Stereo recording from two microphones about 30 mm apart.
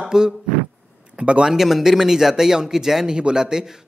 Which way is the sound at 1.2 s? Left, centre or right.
Right.